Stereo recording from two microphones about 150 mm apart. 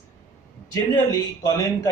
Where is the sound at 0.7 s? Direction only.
20° left (ahead or behind).